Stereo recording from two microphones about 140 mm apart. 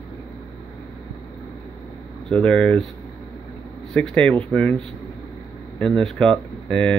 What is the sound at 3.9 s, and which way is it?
Speech, 10° left (ahead or behind).